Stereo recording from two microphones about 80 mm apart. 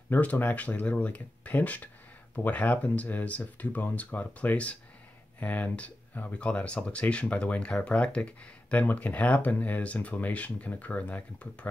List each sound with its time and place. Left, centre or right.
0.1 s speech: left